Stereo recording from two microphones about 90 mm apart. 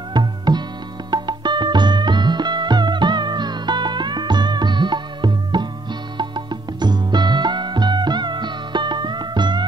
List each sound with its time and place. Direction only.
0.1 s music: 55° right (ahead or behind)